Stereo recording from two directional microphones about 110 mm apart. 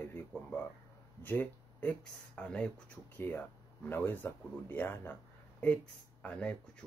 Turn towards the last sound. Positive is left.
turn(degrees=10)  # may be behind; listen again after turning